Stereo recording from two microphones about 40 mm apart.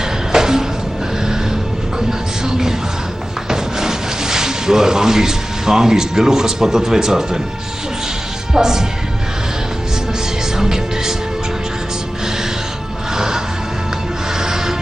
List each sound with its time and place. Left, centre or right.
0.3 s music: centre
3.4 s speech: centre
8.5 s speech: centre
10.6 s music: centre
13.1 s music: centre
14.4 s music: centre